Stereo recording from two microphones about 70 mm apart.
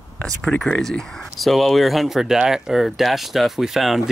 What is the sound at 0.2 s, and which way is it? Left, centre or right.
Speech, centre.